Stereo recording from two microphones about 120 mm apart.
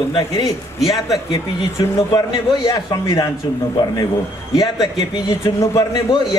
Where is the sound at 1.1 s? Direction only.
30° left (ahead or behind).